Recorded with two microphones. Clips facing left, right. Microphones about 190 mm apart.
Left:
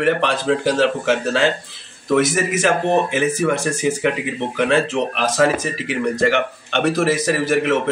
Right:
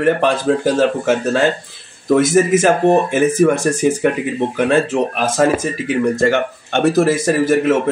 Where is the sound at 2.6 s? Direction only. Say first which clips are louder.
Right 4 dB; 50° right (ahead or behind).